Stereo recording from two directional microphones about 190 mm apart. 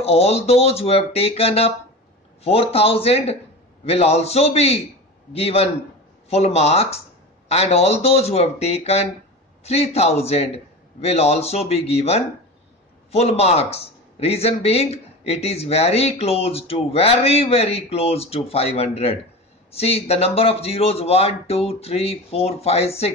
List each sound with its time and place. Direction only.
0.0 s speech: 35° left (ahead or behind)